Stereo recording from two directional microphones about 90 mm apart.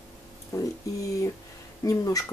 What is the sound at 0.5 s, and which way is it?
Speech, 35° left (ahead or behind).